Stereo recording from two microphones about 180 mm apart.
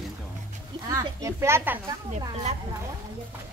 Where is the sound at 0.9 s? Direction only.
15° right (ahead or behind).